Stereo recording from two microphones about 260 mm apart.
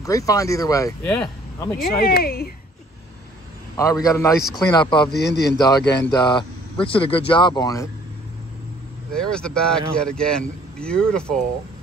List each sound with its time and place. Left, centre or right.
0.0 s speech: centre
1.8 s speech: left
3.7 s speech: centre
5.1 s speech: left
5.5 s speech: centre
9.1 s speech: centre